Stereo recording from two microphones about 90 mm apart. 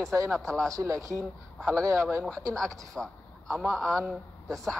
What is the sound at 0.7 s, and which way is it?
Speech, 40° right (ahead or behind).